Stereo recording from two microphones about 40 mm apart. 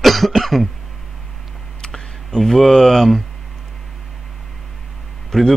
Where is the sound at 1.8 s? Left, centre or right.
Centre.